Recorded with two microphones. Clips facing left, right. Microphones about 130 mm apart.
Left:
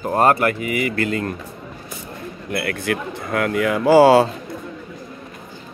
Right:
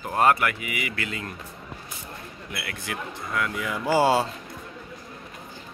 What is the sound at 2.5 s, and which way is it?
Speech, 55° left (ahead or behind).